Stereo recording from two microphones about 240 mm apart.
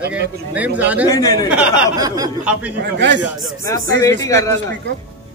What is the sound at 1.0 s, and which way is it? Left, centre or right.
Speech, centre.